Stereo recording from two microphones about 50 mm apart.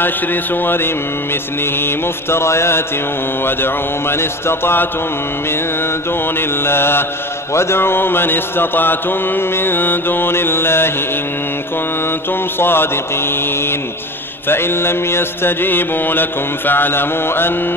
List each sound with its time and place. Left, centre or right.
0.0 s mantra: left
3.4 s mantra: left
6.3 s mantra: left
12.3 s mantra: left